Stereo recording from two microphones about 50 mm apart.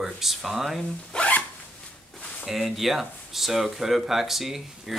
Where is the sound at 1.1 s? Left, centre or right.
Left.